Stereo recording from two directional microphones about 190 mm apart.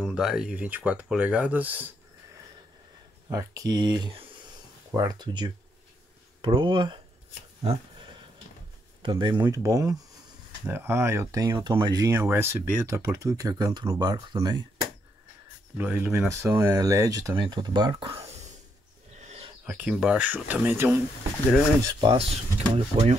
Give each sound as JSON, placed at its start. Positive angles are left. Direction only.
{"t": 0.0, "sound": "speech", "side_deg": -5}
{"t": 3.3, "sound": "speech", "side_deg": -15}
{"t": 9.0, "sound": "speech", "side_deg": -25}
{"t": 15.8, "sound": "speech", "side_deg": -10}
{"t": 19.2, "sound": "a sound", "side_deg": -35}
{"t": 19.6, "sound": "speech", "side_deg": -10}
{"t": 21.8, "sound": "speech", "side_deg": -25}